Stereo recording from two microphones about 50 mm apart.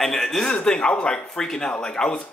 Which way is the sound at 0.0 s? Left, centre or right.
Centre.